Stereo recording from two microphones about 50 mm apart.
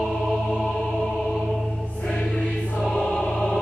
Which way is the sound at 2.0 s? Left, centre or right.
Centre.